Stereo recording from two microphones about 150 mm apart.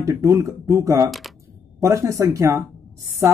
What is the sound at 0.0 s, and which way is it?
Speech, 20° right (ahead or behind).